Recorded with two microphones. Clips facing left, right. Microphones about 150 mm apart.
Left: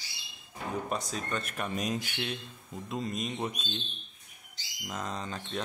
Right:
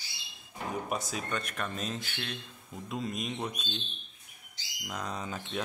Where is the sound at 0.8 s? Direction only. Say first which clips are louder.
Even; 5° right (ahead or behind); by 2.8 s 10° left (ahead or behind).